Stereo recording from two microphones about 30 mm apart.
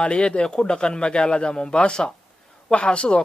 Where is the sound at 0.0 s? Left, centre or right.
Left.